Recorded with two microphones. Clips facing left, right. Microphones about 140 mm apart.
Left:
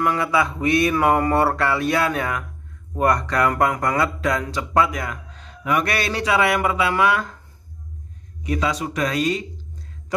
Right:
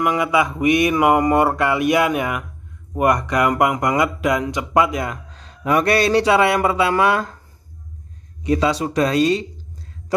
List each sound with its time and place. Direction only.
0.0 s a sound: 15° right (ahead or behind)
2.9 s speech: 15° right (ahead or behind)
8.5 s speech: 30° right (ahead or behind)